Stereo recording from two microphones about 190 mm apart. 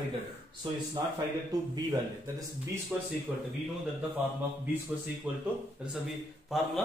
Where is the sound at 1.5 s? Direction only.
15° right (ahead or behind).